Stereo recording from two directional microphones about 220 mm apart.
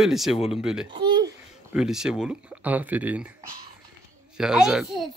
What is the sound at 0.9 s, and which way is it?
Babbling, 20° right (ahead or behind).